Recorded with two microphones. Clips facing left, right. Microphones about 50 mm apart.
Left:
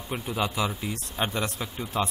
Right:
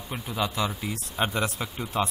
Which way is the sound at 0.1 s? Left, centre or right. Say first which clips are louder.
Left 1 dB; centre.